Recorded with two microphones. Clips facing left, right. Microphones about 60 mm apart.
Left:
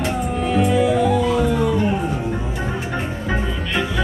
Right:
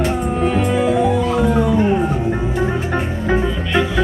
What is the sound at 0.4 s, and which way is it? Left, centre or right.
Music, right.